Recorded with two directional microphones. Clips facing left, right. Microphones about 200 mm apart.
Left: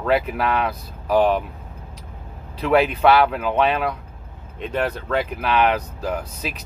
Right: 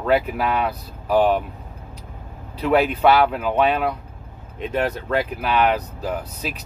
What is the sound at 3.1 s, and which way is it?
Speech, 5° right (ahead or behind).